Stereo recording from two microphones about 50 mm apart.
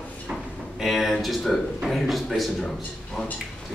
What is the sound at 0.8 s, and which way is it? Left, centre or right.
A man's voice, centre.